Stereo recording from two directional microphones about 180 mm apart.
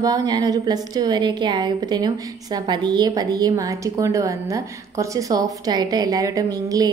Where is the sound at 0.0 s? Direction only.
20° right (ahead or behind).